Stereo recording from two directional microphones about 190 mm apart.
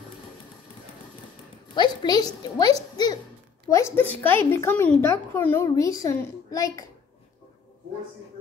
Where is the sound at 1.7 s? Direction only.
20° left (ahead or behind).